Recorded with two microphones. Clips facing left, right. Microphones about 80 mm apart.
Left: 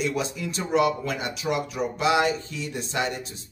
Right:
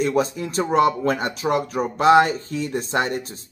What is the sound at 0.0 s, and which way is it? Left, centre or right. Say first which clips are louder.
Speech: right 6 dB; right.